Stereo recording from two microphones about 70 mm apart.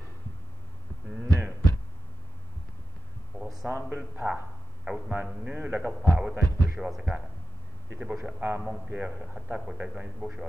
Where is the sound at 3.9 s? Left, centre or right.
Right.